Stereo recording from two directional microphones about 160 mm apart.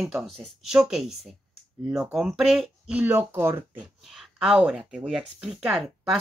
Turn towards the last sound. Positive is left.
turn(degrees=-5)  # may be behind; listen again after turning